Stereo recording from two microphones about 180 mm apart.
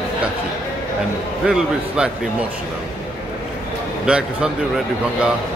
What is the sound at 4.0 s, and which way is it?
Speech, 5° right (ahead or behind).